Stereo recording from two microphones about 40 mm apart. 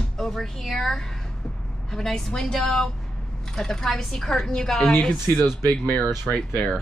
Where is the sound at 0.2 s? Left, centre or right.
Centre.